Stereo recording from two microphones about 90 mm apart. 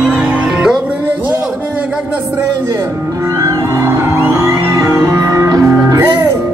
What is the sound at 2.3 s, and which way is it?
Music, 35° right (ahead or behind).